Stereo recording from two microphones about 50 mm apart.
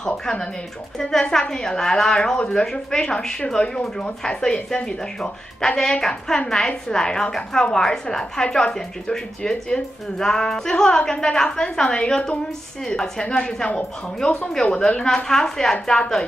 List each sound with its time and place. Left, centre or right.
0.0 s speech: centre
1.5 s speech: centre
15.0 s speech: centre